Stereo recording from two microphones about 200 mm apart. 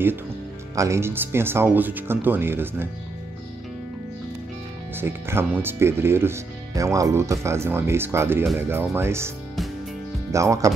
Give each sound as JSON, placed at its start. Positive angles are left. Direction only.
{"t": 0.7, "sound": "speech", "side_deg": -15}
{"t": 4.9, "sound": "speech", "side_deg": -10}
{"t": 10.3, "sound": "speech", "side_deg": -15}